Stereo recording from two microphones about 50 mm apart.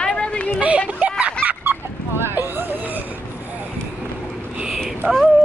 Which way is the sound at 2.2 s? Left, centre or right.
Right.